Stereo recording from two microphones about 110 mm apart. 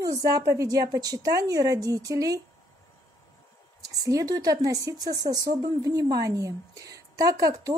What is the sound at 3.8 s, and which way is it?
Speech, 30° right (ahead or behind).